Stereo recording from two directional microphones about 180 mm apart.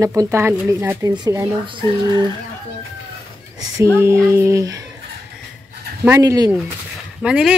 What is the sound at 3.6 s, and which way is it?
Speech, 15° right (ahead or behind).